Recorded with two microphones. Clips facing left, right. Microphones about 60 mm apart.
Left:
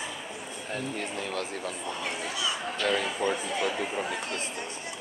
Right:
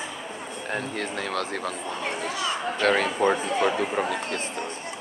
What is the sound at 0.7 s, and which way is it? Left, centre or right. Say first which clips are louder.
Speech: right 4 dB; right.